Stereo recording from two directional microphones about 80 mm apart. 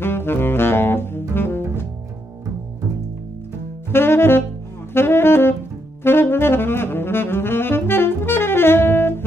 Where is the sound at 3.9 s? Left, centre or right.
Left.